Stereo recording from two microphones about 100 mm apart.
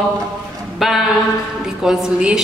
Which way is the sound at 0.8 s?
5° right (ahead or behind).